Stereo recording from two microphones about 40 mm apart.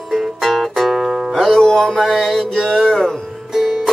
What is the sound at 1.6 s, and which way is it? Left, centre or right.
Mantra, centre.